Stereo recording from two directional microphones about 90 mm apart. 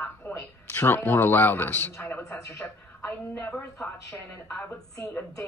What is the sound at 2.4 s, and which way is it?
Speech, 35° left (ahead or behind).